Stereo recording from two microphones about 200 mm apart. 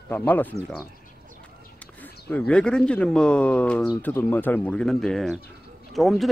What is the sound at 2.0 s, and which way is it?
Speech, 5° left (ahead or behind).